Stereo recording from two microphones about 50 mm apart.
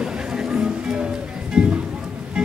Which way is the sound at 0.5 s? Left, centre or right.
Centre.